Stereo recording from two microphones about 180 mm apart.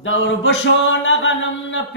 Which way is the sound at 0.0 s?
90° left.